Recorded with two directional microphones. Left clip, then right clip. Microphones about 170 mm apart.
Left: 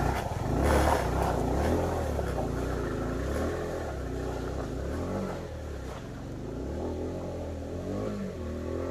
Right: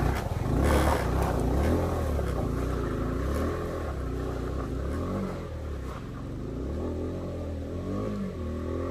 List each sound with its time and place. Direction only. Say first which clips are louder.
0.0 s vehicle: left 1 dB; 20° right (ahead or behind)